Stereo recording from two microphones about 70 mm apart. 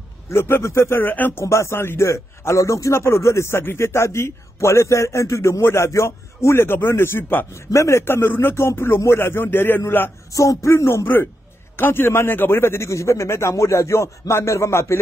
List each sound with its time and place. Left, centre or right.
0.3 s a man's voice: left
1.4 s a man's voice: left
7.5 s a man's voice: left
10.3 s a man's voice: left